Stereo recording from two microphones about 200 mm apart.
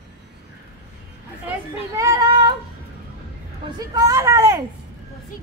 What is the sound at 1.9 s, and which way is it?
Child singing, 20° right (ahead or behind).